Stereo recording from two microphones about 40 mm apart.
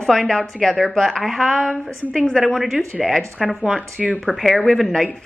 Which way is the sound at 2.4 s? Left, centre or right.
Centre.